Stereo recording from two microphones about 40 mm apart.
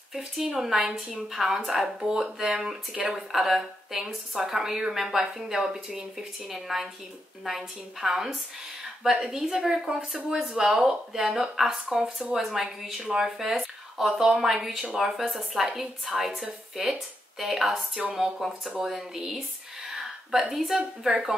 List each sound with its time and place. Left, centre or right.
0.1 s a woman's voice: centre
9.8 s a woman's voice: right
11.9 s a woman's voice: centre
19.9 s a sound: centre
20.5 s a woman's voice: centre